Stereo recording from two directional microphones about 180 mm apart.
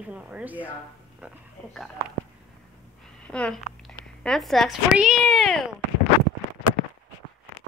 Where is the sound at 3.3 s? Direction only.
5° left (ahead or behind).